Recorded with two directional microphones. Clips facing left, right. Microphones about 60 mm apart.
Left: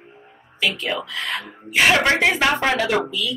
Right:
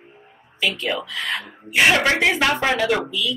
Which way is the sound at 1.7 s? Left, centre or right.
Centre.